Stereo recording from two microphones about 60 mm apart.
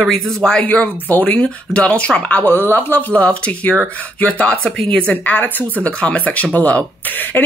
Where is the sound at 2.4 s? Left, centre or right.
Left.